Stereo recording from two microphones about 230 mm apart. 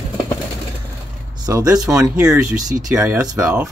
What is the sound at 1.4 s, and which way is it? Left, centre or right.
Speech, centre.